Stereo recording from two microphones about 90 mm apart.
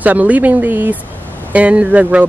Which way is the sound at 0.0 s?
15° right (ahead or behind).